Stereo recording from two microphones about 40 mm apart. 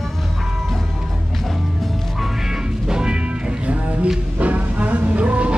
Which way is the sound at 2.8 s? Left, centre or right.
Centre.